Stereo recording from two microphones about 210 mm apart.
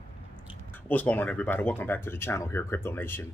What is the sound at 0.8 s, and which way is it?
Speech, 10° left (ahead or behind).